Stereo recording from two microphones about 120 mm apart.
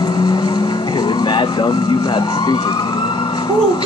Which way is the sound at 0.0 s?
35° left (ahead or behind).